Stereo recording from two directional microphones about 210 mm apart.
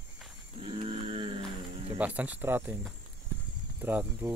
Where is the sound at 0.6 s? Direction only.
25° right (ahead or behind).